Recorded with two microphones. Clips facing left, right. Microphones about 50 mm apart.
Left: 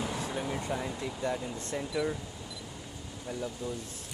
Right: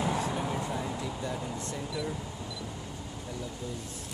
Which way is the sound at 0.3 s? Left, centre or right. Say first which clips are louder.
Right 2 dB; centre.